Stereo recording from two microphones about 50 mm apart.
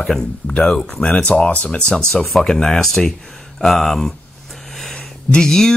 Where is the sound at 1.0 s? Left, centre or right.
Left.